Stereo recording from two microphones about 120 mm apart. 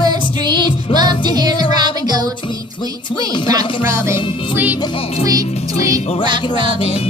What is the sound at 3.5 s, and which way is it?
Music, 30° right (ahead or behind).